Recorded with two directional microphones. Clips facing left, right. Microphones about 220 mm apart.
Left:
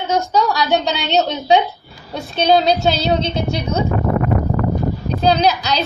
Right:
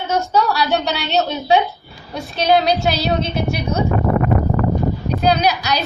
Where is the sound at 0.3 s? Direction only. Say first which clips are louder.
Even; 15° left (ahead or behind).